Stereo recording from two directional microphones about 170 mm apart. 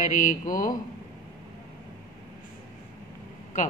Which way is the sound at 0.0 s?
50° left (ahead or behind).